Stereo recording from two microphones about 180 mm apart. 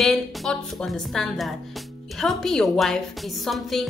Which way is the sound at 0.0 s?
Centre (ahead or behind).